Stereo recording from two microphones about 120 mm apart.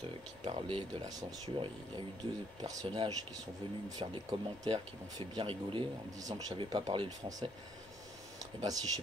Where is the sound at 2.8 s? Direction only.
45° right (ahead or behind).